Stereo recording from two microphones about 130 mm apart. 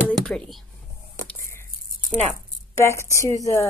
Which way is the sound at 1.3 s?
20° left (ahead or behind).